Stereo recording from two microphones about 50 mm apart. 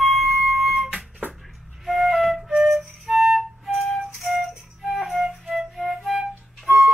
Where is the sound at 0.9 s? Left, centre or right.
Right.